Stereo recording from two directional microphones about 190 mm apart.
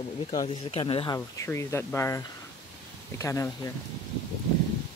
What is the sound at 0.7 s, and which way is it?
Speech, 30° left (ahead or behind).